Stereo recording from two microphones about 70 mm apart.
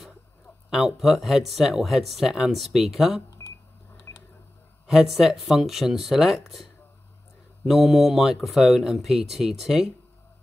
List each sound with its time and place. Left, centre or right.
0.7 s speech: centre
4.1 s a sound: left
4.8 s speech: centre